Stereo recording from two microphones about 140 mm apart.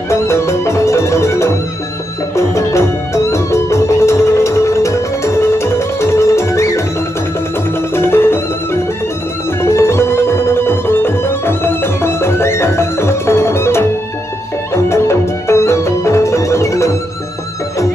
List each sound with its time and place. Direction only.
0.1 s music: 20° left (ahead or behind)
7.9 s music: 15° left (ahead or behind)
9.6 s music: 20° left (ahead or behind)